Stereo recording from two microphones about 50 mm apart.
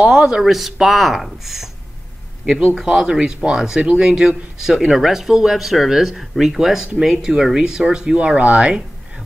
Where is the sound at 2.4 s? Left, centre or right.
Centre.